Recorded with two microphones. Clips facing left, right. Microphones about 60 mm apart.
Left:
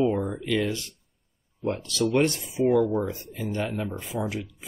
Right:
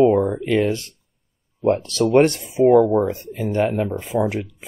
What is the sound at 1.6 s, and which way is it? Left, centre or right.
Speech, right.